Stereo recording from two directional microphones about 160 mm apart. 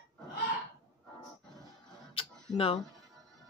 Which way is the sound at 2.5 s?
35° left (ahead or behind).